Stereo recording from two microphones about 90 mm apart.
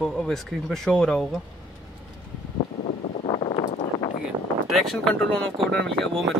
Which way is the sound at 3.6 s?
60° left (ahead or behind).